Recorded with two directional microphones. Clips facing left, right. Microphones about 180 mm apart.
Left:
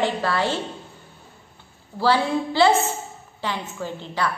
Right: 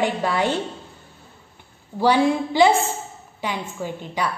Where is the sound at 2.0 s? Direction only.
15° right (ahead or behind).